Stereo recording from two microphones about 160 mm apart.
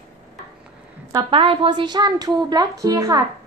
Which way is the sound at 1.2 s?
35° right (ahead or behind).